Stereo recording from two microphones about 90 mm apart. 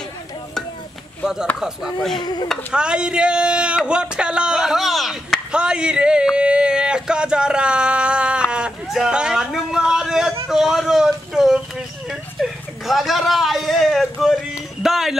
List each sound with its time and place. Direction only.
1.2 s speech: 5° right (ahead or behind)
2.7 s speech: 10° right (ahead or behind)